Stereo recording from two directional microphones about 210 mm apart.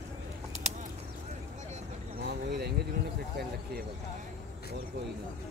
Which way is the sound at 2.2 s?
50° right (ahead or behind).